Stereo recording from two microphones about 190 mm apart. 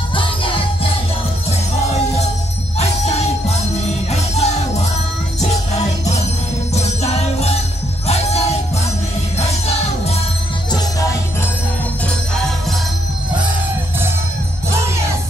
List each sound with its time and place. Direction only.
0.1 s music: 25° left (ahead or behind)
2.8 s music: 35° left (ahead or behind)
6.7 s music: 35° left (ahead or behind)